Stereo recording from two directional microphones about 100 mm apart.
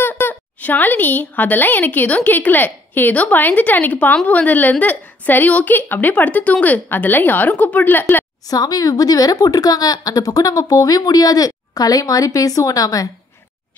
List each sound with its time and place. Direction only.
0.0 s a woman's voice: 20° left (ahead or behind)
8.5 s a woman's voice: 40° left (ahead or behind)